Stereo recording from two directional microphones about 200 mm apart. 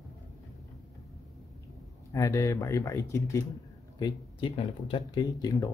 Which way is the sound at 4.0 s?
25° left (ahead or behind).